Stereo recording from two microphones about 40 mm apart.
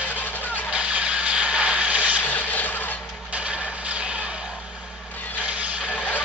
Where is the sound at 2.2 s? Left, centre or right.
Left.